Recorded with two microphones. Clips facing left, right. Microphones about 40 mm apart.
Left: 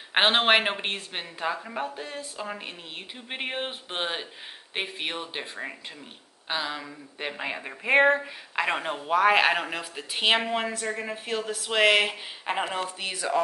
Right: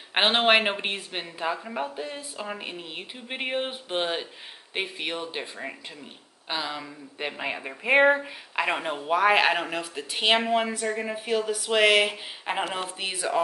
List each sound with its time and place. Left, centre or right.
0.1 s speech: centre
3.3 s speech: centre
13.0 s speech: centre